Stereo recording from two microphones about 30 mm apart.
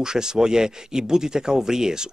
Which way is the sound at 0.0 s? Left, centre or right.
Right.